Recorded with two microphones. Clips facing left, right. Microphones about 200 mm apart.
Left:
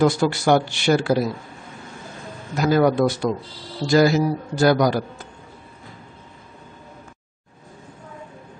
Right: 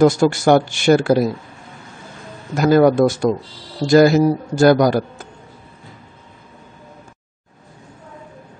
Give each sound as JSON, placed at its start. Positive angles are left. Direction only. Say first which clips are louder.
{"t": 0.0, "sound": "speech", "louder": "right 5 dB", "side_deg": -45}
{"t": 2.5, "sound": "speech", "louder": "right 5 dB", "side_deg": -50}